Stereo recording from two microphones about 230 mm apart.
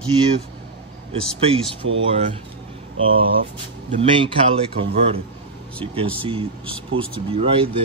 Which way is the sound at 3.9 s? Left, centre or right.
Right.